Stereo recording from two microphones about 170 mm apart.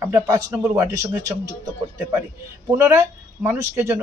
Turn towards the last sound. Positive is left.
turn(degrees=-15)  # may be behind; listen again after turning